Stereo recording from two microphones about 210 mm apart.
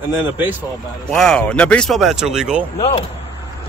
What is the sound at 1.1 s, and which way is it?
Speech, 5° left (ahead or behind).